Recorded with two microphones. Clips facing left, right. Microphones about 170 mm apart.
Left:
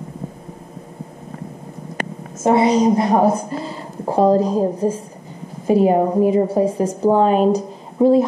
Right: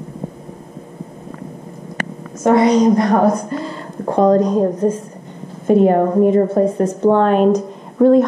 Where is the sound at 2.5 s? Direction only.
5° left (ahead or behind).